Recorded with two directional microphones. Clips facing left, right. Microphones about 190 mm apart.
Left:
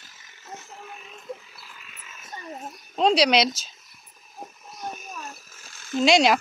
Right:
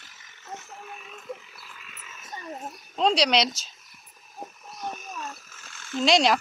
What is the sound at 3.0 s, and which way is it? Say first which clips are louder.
Speech: left 3 dB; 5° left (ahead or behind).